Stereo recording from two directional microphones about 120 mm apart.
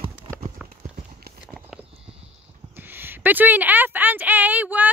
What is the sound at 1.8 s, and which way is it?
Clip-clop, 55° right (ahead or behind).